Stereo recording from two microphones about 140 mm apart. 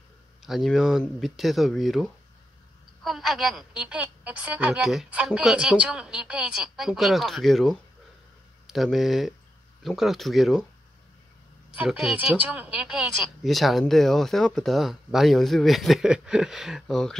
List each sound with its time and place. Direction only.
0.4 s a woman's voice: centre (ahead or behind)
11.7 s a woman's voice: 10° right (ahead or behind)